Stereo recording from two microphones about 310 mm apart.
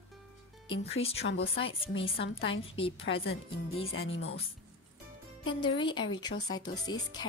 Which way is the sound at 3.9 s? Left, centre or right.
Left.